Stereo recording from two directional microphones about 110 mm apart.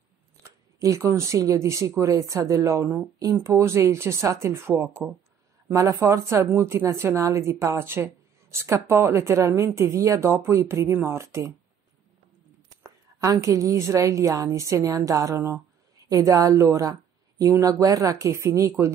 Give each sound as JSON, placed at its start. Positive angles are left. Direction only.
{"t": 0.7, "sound": "speech", "side_deg": -30}
{"t": 12.8, "sound": "a woman's voice", "side_deg": -30}